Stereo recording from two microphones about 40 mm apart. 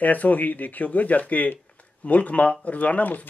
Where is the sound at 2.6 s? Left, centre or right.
Left.